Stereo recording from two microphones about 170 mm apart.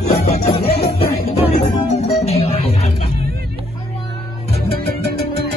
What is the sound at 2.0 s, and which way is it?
Music, 35° left (ahead or behind).